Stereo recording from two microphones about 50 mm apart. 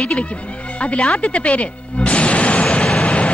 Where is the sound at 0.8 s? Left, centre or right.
Left.